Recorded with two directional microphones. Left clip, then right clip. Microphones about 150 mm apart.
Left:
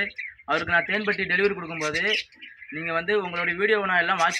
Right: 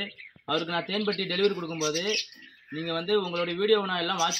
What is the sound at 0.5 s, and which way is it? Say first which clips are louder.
Speech: left 6 dB; 15° left (ahead or behind).